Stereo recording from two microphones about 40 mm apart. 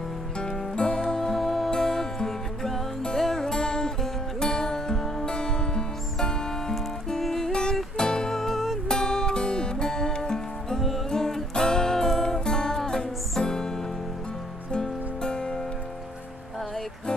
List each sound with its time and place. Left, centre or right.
0.4 s music: left
7.1 s music: centre
8.0 s music: centre
8.8 s music: centre